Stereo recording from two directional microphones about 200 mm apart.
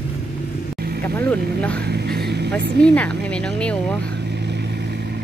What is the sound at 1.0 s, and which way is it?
Speech, 10° left (ahead or behind).